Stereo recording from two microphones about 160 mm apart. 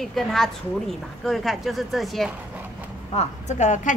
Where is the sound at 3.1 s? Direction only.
45° left (ahead or behind).